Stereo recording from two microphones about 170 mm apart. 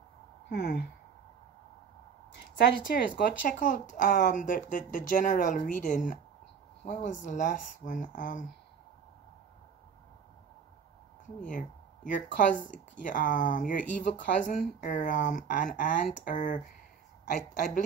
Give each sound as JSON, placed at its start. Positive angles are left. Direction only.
{"t": 0.5, "sound": "a sound", "side_deg": 80}
{"t": 2.3, "sound": "speech", "side_deg": 80}
{"t": 11.4, "sound": "speech", "side_deg": 50}